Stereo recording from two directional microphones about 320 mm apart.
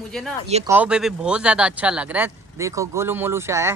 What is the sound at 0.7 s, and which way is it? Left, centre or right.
Speech, centre.